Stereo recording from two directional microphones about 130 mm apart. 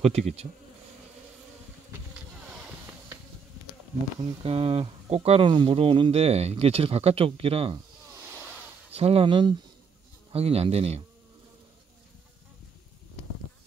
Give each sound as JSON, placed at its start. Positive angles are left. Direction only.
{"t": 0.0, "sound": "speech", "side_deg": -55}
{"t": 2.4, "sound": "a sound", "side_deg": -5}
{"t": 4.2, "sound": "speech", "side_deg": -45}
{"t": 5.5, "sound": "speech", "side_deg": -40}
{"t": 8.1, "sound": "a sound", "side_deg": -15}
{"t": 8.9, "sound": "speech", "side_deg": -50}
{"t": 10.3, "sound": "speech", "side_deg": -50}